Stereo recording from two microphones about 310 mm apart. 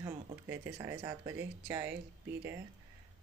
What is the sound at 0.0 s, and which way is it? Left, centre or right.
Speech, centre.